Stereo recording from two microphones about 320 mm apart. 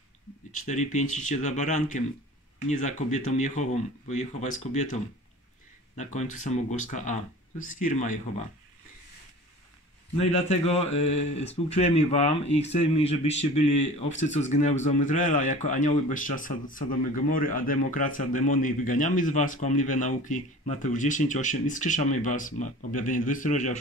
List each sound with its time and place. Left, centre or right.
0.7 s a man's voice: left
10.1 s a man's voice: centre